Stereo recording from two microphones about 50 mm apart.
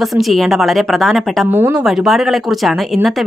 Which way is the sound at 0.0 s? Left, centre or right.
Centre.